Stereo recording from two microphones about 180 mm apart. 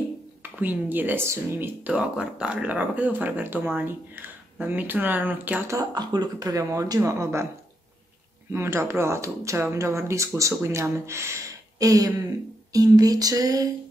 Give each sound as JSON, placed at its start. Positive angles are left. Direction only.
{"t": 0.4, "sound": "speech", "side_deg": -10}
{"t": 8.5, "sound": "speech", "side_deg": -15}
{"t": 12.7, "sound": "a sound", "side_deg": -20}